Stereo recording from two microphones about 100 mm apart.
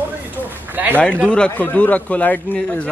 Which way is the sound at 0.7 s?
20° right (ahead or behind).